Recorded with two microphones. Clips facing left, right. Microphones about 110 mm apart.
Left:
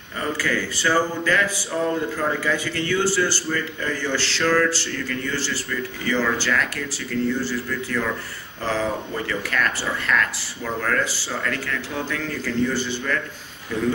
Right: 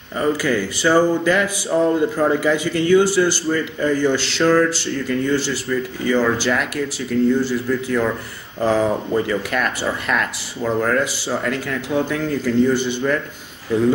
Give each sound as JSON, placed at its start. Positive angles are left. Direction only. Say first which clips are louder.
{"t": 0.2, "sound": "a man's voice", "louder": "right 6 dB", "side_deg": -15}